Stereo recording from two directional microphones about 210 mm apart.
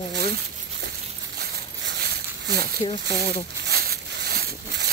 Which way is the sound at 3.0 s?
50° right (ahead or behind).